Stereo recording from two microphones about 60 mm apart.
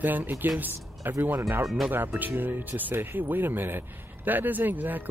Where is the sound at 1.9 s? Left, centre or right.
Right.